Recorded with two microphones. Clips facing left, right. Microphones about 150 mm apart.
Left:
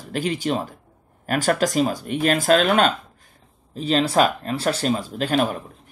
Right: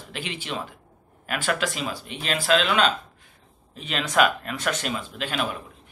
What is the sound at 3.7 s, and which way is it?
Speech, 35° left (ahead or behind).